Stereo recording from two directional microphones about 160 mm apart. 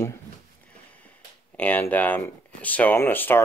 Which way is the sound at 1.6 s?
10° left (ahead or behind).